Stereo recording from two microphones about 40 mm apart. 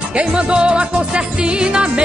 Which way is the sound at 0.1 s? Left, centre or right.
Right.